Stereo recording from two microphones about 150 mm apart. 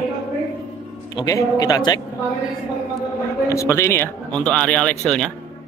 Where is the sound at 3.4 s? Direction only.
20° left (ahead or behind).